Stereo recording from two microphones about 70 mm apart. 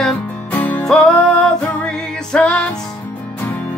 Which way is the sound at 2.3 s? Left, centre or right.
Centre.